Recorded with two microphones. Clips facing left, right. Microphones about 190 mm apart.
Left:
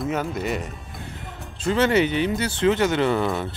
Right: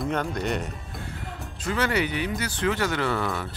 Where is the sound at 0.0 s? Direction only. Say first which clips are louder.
Left 2 dB; 5° left (ahead or behind).